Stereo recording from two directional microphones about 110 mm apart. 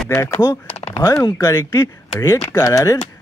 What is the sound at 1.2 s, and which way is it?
Speech, 30° left (ahead or behind).